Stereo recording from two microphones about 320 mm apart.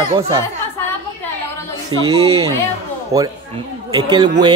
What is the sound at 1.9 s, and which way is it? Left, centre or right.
Speech, centre.